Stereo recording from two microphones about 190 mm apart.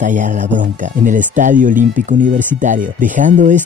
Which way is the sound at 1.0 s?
40° right (ahead or behind).